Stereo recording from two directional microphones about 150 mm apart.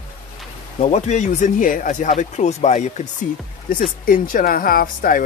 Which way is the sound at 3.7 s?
65° left (ahead or behind).